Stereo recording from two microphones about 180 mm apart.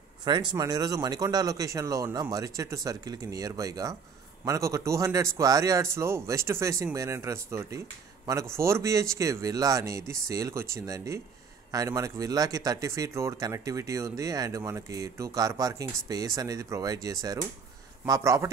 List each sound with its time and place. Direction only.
0.2 s speech: 25° right (ahead or behind)